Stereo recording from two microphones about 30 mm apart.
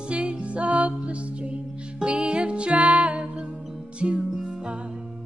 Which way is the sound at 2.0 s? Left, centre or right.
Right.